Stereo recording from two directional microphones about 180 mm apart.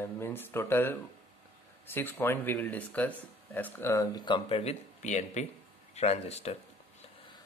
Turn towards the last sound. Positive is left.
turn(degrees=35)  # may be behind; listen again after turning